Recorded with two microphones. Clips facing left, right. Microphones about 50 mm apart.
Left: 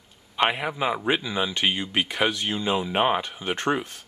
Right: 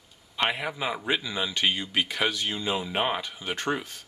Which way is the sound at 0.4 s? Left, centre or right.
Centre.